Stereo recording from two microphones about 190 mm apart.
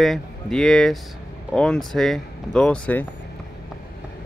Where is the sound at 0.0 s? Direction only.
Centre (ahead or behind).